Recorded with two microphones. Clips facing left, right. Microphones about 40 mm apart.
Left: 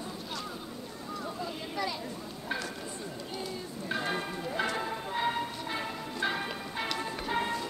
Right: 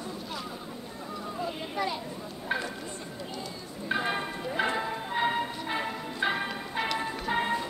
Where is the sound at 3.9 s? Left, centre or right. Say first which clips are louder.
Right 3 dB; right.